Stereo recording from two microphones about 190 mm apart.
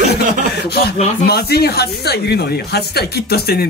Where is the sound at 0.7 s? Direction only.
55° left (ahead or behind).